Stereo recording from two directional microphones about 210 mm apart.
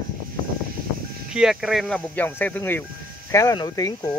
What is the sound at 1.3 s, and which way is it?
Speech, centre (ahead or behind).